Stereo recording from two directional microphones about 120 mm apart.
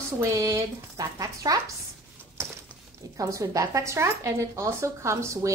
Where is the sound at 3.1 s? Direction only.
30° right (ahead or behind).